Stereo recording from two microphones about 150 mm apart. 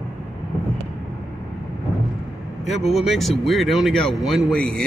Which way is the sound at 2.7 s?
45° left (ahead or behind).